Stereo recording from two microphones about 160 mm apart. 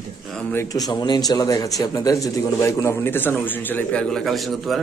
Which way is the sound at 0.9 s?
25° left (ahead or behind).